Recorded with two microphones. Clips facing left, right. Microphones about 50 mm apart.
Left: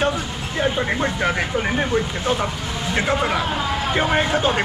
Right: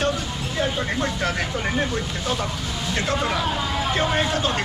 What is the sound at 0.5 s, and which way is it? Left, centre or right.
Speech, left.